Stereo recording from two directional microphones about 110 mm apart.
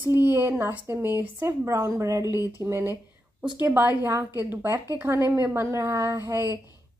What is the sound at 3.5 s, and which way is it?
A woman's voice, 20° right (ahead or behind).